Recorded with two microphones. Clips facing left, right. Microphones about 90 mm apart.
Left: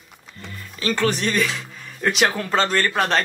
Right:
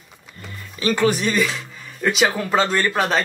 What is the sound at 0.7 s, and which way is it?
Speech, 15° right (ahead or behind).